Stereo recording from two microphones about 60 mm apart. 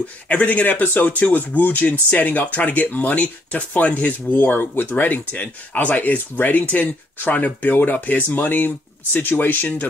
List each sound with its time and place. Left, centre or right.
0.3 s speech: left